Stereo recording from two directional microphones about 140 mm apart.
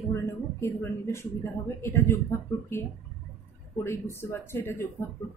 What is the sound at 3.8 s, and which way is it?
A woman's voice, 20° left (ahead or behind).